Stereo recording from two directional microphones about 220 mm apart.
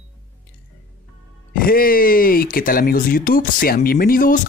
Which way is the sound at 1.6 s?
40° left (ahead or behind).